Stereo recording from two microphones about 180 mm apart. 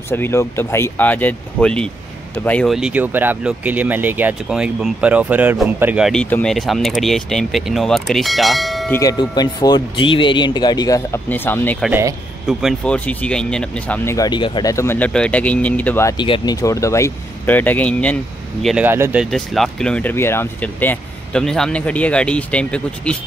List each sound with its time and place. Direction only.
0.1 s speech: 15° left (ahead or behind)
8.9 s speech: 20° left (ahead or behind)
11.9 s speech: 15° right (ahead or behind)
12.4 s speech: 5° left (ahead or behind)
16.3 s speech: 30° left (ahead or behind)
16.6 s speech: 15° left (ahead or behind); by 18.9 s centre (ahead or behind)
18.9 s speech: 10° right (ahead or behind)
19.3 s speech: centre (ahead or behind)